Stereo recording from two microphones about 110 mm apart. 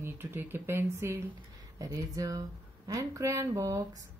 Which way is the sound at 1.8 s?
30° right (ahead or behind).